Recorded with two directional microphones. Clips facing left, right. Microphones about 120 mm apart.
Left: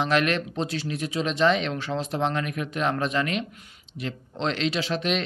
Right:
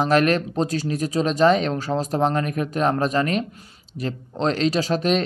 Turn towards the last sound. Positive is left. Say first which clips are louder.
# right 6 dB
turn(degrees=-40)  # may be behind; listen again after turning